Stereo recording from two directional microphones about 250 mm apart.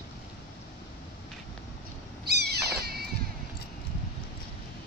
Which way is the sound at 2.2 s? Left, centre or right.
Right.